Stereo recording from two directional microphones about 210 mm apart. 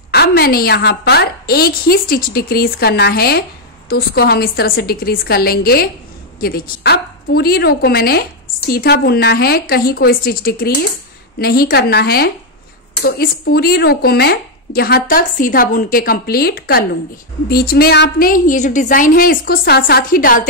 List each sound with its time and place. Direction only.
0.1 s speech: 50° left (ahead or behind)